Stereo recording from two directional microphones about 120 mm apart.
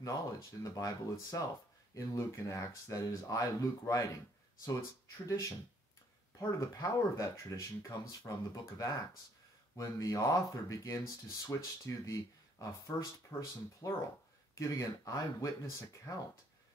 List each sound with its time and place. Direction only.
0.0 s speech: 25° left (ahead or behind)
5.2 s speech: 25° left (ahead or behind)